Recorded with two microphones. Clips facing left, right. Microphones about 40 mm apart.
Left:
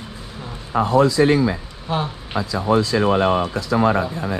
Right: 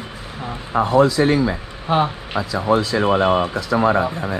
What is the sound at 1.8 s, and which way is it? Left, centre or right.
Speech, right.